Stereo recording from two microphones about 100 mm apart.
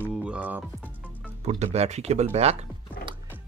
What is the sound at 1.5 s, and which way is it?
Speech, 90° right.